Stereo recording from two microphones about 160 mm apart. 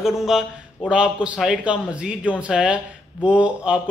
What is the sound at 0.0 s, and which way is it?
A man's voice, centre (ahead or behind).